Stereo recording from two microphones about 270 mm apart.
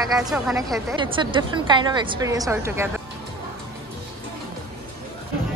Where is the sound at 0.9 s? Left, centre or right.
Centre.